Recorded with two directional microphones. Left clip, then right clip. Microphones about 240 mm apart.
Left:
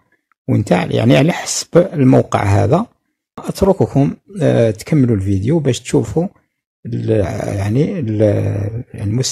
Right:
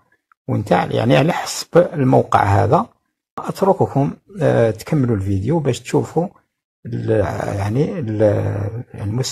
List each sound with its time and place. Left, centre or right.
0.5 s speech: left